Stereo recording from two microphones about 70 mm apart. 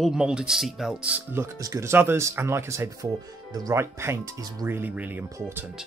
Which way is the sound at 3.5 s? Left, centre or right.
Right.